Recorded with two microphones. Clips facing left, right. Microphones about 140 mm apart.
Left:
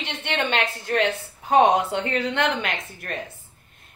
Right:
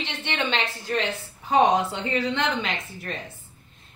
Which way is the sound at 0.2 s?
55° left (ahead or behind).